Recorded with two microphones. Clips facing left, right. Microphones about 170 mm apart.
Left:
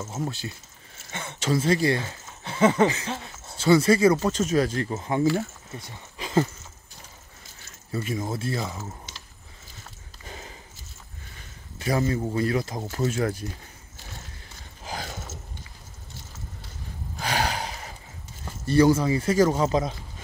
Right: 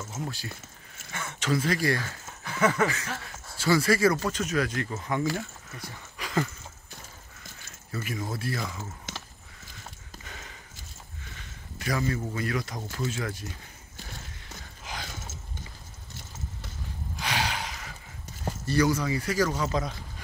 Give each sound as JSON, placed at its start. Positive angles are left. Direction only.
{"t": 0.1, "sound": "a man's voice", "side_deg": 25}
{"t": 7.9, "sound": "a man's voice", "side_deg": 25}
{"t": 10.2, "sound": "a sound", "side_deg": 30}
{"t": 12.1, "sound": "speech", "side_deg": 30}
{"t": 17.2, "sound": "sigh", "side_deg": 40}
{"t": 18.7, "sound": "a man's voice", "side_deg": 30}